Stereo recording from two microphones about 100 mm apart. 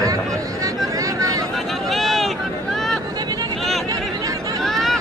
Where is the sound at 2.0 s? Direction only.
Centre (ahead or behind).